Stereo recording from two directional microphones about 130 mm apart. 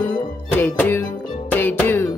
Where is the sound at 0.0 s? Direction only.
10° left (ahead or behind).